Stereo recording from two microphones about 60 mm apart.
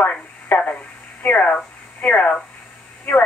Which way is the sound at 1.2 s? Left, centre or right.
Left.